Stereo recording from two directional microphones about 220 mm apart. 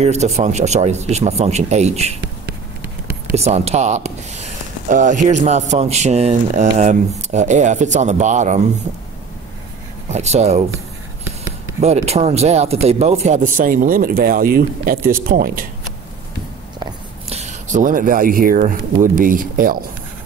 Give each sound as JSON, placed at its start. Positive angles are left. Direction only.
{"t": 0.0, "sound": "speech", "side_deg": -30}
{"t": 3.3, "sound": "speech", "side_deg": -30}
{"t": 10.0, "sound": "speech", "side_deg": -30}
{"t": 11.8, "sound": "speech", "side_deg": -30}
{"t": 16.8, "sound": "a sound", "side_deg": -30}
{"t": 19.1, "sound": "speech", "side_deg": -40}